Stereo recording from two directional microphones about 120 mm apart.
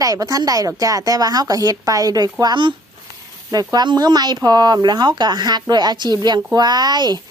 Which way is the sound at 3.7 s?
35° right (ahead or behind).